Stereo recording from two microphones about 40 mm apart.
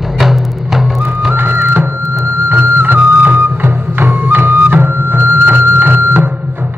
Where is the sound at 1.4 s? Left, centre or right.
Right.